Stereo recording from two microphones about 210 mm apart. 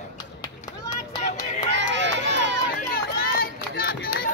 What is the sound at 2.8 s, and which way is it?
Run, 45° left (ahead or behind).